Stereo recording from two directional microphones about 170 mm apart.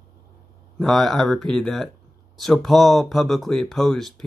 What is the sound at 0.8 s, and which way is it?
Speech, centre (ahead or behind).